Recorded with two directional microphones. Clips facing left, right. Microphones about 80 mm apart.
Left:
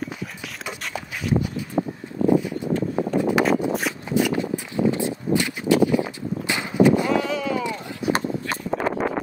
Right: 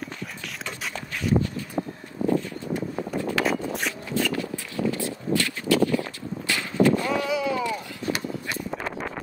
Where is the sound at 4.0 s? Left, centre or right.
Centre.